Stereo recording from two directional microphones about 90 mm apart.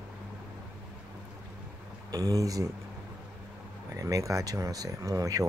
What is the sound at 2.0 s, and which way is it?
Speech, 40° right (ahead or behind).